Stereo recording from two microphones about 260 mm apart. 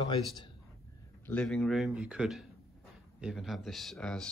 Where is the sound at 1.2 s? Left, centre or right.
Centre.